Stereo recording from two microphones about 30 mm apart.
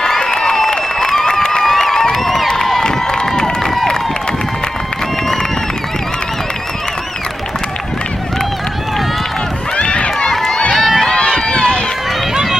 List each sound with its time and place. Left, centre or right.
0.2 s a sound: left
2.2 s crowd: centre
2.8 s run: left
9.8 s run: left
10.7 s run: centre
11.2 s run: centre
11.5 s run: left